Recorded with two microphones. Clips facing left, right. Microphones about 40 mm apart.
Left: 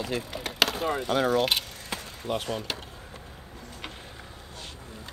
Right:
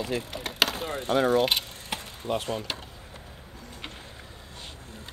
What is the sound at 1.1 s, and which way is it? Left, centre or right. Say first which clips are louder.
Speech: right 3 dB; centre.